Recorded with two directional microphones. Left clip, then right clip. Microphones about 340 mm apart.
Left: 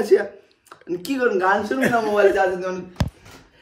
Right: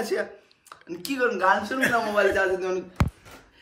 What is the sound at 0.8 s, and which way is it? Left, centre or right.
Speech, centre.